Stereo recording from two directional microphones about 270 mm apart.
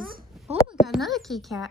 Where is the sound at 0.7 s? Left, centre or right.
Centre.